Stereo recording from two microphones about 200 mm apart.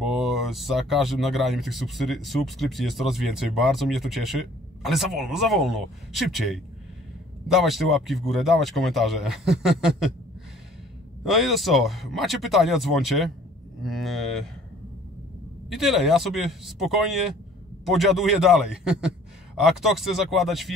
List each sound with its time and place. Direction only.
0.0 s speech: centre (ahead or behind)
11.2 s speech: centre (ahead or behind)
15.7 s speech: centre (ahead or behind)